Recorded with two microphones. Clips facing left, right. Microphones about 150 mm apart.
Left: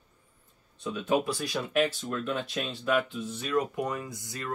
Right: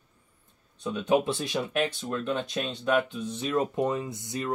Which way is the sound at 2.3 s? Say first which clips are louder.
Right 2 dB; 5° left (ahead or behind).